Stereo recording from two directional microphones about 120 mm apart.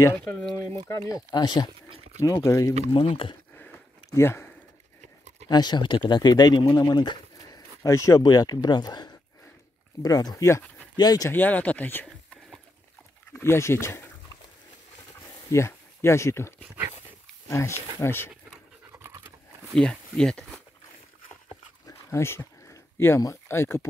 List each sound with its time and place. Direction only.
0.0 s speech: 15° left (ahead or behind); by 1.7 s 40° left (ahead or behind)
2.1 s speech: 25° left (ahead or behind)
2.9 s speech: 50° left (ahead or behind)
4.1 s speech: 20° left (ahead or behind)
5.0 s a sound: 70° right (ahead or behind)
5.5 s speech: 35° left (ahead or behind)
11.2 s speech: 15° left (ahead or behind)
13.4 s speech: 20° left (ahead or behind)
15.5 s speech: 20° left (ahead or behind)
18.9 s pant: 25° right (ahead or behind)
19.7 s speech: 5° left (ahead or behind)
21.8 s a sound: 20° left (ahead or behind)